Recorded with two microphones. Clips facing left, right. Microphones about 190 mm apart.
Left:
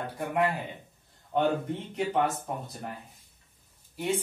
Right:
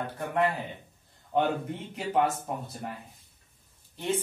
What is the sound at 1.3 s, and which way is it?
Speech, centre (ahead or behind).